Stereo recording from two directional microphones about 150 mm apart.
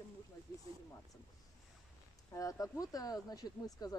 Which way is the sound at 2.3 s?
20° left (ahead or behind).